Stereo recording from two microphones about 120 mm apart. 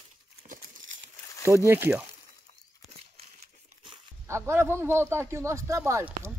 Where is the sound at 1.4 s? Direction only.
20° right (ahead or behind).